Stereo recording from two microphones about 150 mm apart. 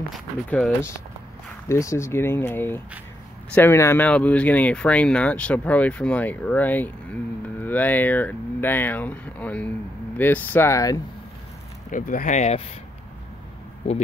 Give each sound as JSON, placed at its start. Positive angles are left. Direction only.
{"t": 0.1, "sound": "speech", "side_deg": 5}
{"t": 1.7, "sound": "speech", "side_deg": 20}
{"t": 11.9, "sound": "speech", "side_deg": 60}